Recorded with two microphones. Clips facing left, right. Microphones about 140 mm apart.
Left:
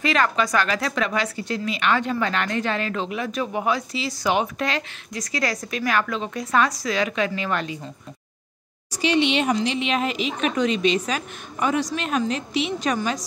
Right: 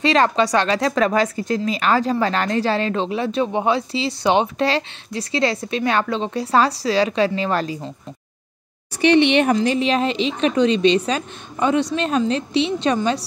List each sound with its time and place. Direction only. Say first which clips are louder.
0.0 s speech: right 5 dB; 30° right (ahead or behind)
8.9 s speech: right 6 dB; 60° right (ahead or behind); by 13.2 s 30° right (ahead or behind)